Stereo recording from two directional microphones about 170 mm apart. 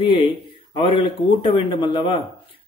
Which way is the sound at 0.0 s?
30° left (ahead or behind).